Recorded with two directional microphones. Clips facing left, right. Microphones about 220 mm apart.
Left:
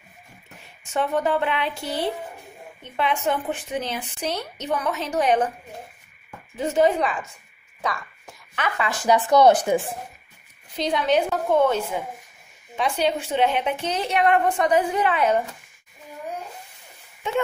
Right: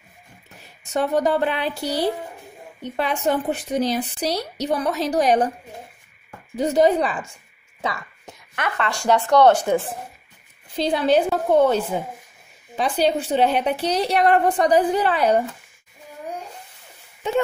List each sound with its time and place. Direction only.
0.8 s speech: 35° right (ahead or behind)
6.5 s speech: 35° right (ahead or behind)
7.8 s a sound: 25° right (ahead or behind)
8.6 s speech: 5° left (ahead or behind)
10.7 s speech: 30° right (ahead or behind)